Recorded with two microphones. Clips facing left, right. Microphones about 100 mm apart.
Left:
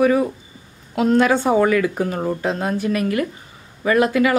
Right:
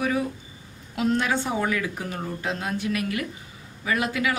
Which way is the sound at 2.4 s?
40° left (ahead or behind).